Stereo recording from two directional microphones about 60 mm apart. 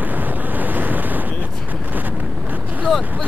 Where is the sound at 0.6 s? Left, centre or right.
Right.